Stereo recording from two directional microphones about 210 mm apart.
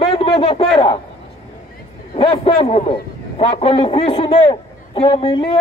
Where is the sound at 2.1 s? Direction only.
25° left (ahead or behind).